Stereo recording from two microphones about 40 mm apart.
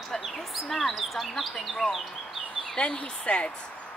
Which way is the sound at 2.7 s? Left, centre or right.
Left.